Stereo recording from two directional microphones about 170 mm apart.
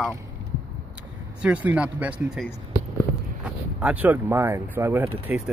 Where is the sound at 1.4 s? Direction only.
10° right (ahead or behind).